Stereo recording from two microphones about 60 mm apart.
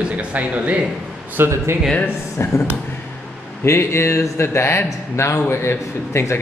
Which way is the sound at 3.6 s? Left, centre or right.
Left.